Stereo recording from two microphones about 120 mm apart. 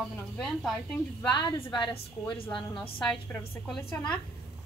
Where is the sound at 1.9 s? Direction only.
50° left (ahead or behind).